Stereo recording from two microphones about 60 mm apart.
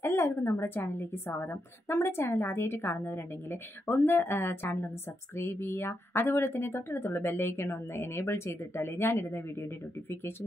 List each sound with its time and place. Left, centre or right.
0.0 s a woman's voice: left